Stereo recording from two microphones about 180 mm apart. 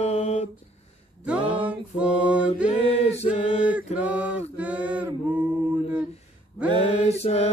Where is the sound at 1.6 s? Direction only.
5° right (ahead or behind).